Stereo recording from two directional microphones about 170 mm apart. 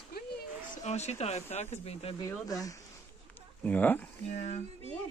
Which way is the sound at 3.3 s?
10° left (ahead or behind).